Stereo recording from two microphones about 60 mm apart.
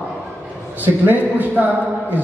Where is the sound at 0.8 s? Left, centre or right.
Right.